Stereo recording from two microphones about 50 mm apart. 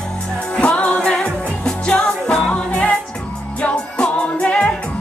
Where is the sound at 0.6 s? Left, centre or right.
Left.